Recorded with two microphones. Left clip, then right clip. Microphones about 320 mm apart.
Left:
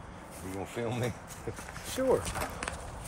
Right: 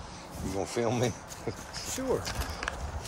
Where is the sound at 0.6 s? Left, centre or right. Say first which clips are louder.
Right 5 dB; centre.